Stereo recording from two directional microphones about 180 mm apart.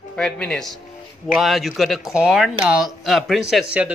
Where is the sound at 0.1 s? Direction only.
5° left (ahead or behind).